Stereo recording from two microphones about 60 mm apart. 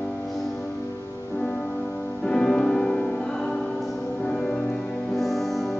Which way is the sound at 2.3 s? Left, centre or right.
Centre.